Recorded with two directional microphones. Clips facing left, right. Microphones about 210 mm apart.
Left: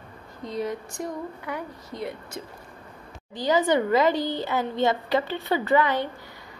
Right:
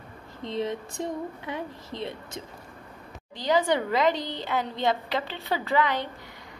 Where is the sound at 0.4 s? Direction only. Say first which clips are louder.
Even; 25° right (ahead or behind).